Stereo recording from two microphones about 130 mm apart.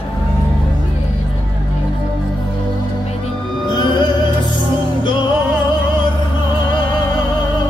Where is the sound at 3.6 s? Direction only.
35° left (ahead or behind).